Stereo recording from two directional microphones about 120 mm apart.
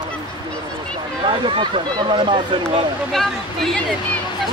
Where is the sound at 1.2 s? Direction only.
45° right (ahead or behind).